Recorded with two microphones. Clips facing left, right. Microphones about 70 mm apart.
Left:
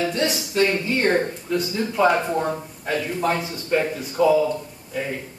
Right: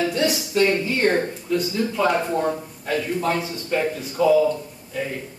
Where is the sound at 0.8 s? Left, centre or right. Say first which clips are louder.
Even; centre.